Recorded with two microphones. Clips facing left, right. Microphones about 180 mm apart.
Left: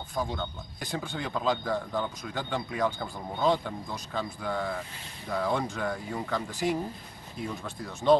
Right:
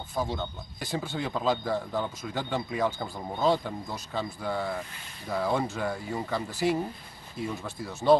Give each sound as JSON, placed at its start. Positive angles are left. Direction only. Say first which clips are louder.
{"t": 0.1, "sound": "a man's voice", "louder": "right 1 dB", "side_deg": -5}